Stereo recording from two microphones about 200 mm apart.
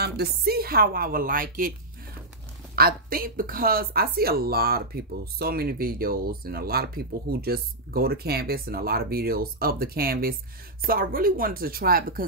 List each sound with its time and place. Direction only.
0.0 s speech: 50° right (ahead or behind)
2.7 s speech: 50° right (ahead or behind)